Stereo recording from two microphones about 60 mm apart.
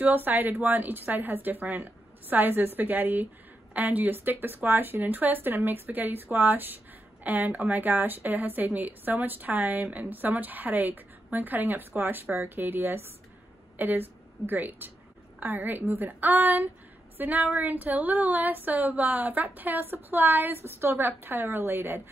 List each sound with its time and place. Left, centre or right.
0.0 s a woman's voice: right